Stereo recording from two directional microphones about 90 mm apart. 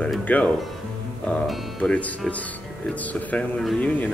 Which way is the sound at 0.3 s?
15° left (ahead or behind).